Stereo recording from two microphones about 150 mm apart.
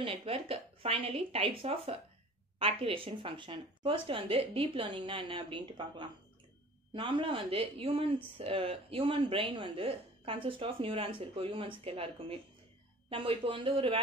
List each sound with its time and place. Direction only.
0.0 s speech: 40° right (ahead or behind)